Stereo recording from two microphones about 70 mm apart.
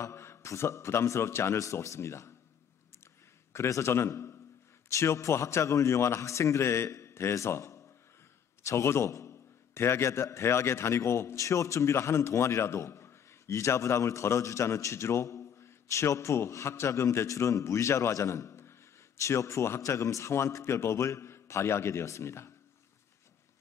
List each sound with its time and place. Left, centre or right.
0.0 s a man's voice: left
3.5 s a man's voice: left